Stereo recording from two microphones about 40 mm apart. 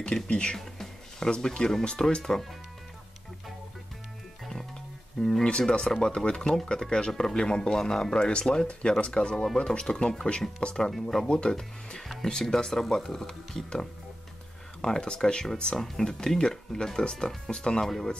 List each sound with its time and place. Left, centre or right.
0.0 s speech: left
0.6 s music: centre
1.3 s speech: centre
5.2 s speech: centre
10.9 s speech: centre
11.2 s speech: left
12.0 s speech: centre
14.8 s speech: left